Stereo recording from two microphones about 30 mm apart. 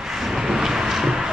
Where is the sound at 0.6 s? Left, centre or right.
Centre.